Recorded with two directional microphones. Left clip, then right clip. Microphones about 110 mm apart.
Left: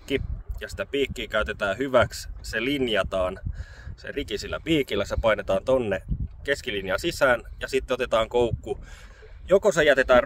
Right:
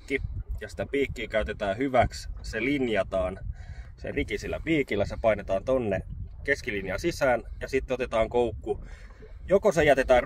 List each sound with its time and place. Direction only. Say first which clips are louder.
0.1 s speech: left 3 dB; 30° left (ahead or behind)
4.7 s speech: left 3 dB; 50° left (ahead or behind); by 10.2 s 20° left (ahead or behind)